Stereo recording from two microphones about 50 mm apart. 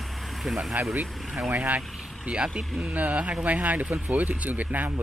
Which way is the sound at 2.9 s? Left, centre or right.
Right.